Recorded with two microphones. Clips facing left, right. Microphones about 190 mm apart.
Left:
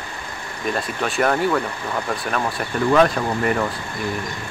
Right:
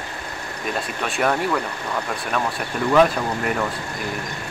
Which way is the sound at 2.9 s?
Centre (ahead or behind).